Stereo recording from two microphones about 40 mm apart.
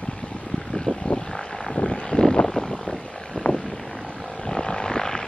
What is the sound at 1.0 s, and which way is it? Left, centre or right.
Vehicle, left.